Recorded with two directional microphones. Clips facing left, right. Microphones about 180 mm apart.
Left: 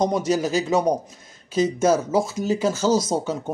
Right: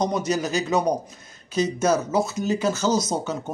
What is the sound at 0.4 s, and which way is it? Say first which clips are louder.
Speech: left 2 dB; 30° left (ahead or behind).